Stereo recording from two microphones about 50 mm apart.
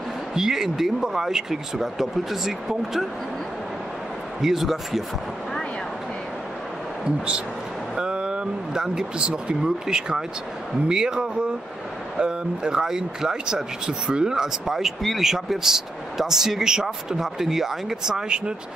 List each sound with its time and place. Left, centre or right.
0.3 s speech: centre
4.4 s a man's voice: centre
7.1 s speech: right
7.9 s a sound: centre
9.3 s speech: centre